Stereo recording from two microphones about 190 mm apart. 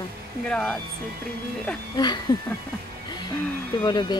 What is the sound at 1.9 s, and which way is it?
Speech, 20° left (ahead or behind).